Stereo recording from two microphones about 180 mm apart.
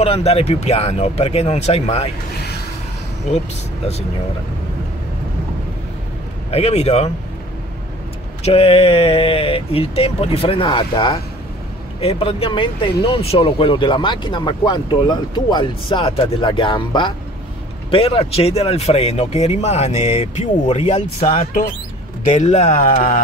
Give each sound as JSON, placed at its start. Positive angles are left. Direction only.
{"t": 0.0, "sound": "speech", "side_deg": 35}
{"t": 3.3, "sound": "speech", "side_deg": 40}
{"t": 6.5, "sound": "speech", "side_deg": 35}
{"t": 8.5, "sound": "speech", "side_deg": 35}